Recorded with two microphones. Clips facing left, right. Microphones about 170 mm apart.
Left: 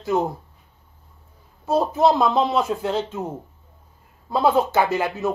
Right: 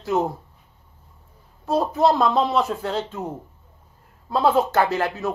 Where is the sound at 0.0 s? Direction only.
Centre (ahead or behind).